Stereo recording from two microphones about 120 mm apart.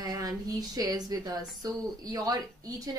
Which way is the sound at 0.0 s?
30° right (ahead or behind).